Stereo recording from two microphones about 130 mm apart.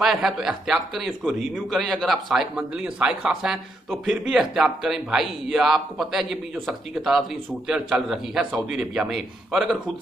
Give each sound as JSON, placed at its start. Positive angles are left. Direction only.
{"t": 0.0, "sound": "a man's voice", "side_deg": 0}